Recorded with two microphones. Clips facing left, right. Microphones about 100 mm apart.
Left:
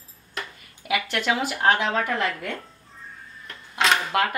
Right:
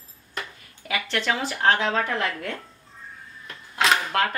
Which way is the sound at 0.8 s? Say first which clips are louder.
Left 2 dB; 10° left (ahead or behind).